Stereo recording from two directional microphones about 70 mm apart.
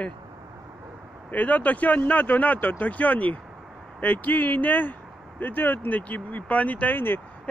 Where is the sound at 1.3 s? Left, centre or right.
Left.